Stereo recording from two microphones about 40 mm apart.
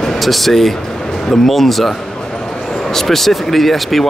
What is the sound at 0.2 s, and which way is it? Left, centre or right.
Speech, centre.